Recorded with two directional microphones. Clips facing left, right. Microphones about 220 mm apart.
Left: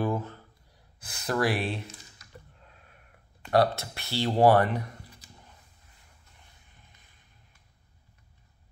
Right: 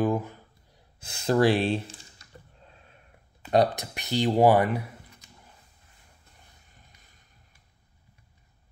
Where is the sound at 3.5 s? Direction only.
15° right (ahead or behind).